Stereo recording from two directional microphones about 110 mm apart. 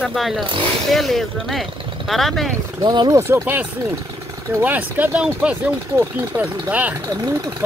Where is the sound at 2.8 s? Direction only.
40° right (ahead or behind).